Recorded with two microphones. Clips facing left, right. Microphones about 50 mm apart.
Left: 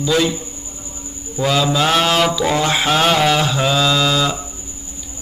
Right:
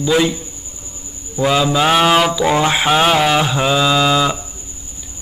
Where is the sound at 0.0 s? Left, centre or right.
Centre.